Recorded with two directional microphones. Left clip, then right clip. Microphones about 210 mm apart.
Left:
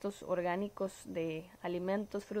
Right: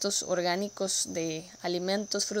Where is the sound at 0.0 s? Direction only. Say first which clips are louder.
Right 7 dB; 20° right (ahead or behind).